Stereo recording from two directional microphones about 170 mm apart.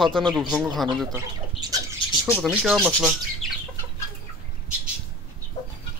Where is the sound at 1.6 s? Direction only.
20° right (ahead or behind).